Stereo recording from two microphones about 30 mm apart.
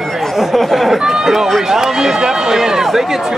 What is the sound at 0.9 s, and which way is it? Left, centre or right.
Speech, centre.